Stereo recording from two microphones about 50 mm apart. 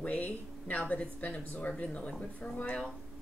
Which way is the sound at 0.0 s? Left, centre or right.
Left.